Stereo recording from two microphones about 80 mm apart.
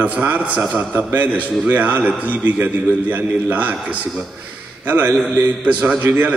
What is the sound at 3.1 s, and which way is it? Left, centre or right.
Speech, right.